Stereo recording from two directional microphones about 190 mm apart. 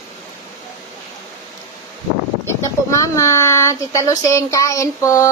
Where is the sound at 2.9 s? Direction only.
15° left (ahead or behind).